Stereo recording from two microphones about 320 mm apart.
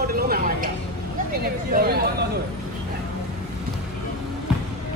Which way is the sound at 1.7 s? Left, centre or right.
Right.